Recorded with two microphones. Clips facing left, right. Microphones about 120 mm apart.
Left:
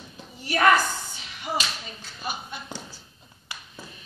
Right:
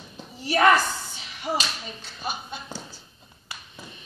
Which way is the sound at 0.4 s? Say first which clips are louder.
Right 3 dB; 35° right (ahead or behind).